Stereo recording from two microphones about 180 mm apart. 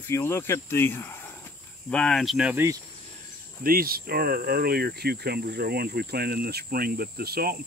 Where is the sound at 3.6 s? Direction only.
55° right (ahead or behind).